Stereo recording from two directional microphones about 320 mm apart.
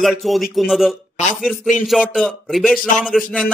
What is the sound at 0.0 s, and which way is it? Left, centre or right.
Speech, centre.